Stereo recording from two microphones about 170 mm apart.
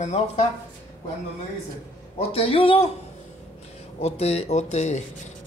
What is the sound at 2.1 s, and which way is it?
Speech, 35° left (ahead or behind).